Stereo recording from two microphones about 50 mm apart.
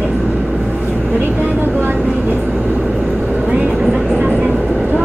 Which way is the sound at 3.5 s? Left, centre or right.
Right.